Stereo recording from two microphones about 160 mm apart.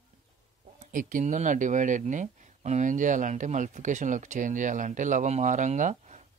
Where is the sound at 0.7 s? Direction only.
55° right (ahead or behind).